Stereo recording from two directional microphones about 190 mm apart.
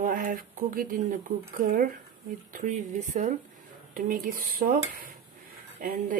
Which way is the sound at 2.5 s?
45° right (ahead or behind).